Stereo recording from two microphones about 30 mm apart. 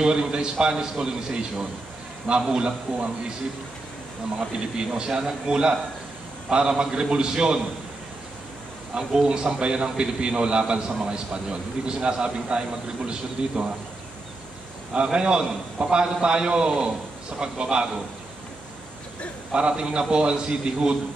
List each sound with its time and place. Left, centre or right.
0.0 s a man's voice: right
4.4 s a man's voice: right
9.2 s a man's voice: right
15.1 s a man's voice: right
19.5 s a man's voice: right